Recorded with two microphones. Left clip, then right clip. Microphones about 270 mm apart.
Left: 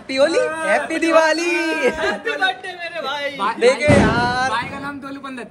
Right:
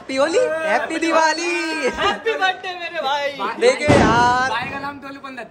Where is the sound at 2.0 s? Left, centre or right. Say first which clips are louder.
Right 1 dB; centre.